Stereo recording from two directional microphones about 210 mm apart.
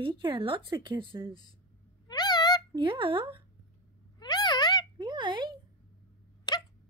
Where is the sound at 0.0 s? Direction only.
25° right (ahead or behind).